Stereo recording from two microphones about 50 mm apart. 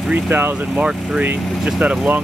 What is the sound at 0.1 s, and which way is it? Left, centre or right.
Speech, right.